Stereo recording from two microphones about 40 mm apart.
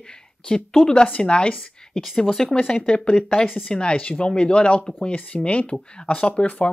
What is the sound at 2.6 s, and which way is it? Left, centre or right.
Speech, left.